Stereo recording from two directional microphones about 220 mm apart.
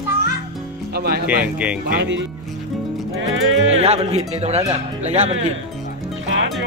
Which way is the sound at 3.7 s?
30° right (ahead or behind).